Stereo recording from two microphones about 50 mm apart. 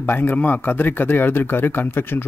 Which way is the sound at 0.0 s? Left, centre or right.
Left.